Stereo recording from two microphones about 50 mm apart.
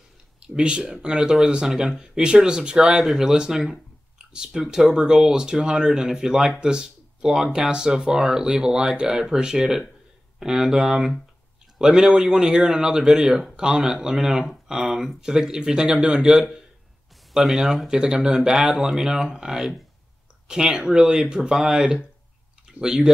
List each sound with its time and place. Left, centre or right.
0.6 s speech: centre
17.3 s speech: centre
17.8 s speech: centre